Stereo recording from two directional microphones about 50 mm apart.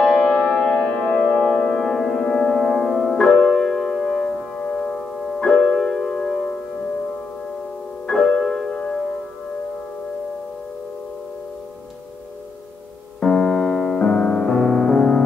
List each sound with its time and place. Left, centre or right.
0.0 s music: centre
8.1 s music: centre
13.2 s music: centre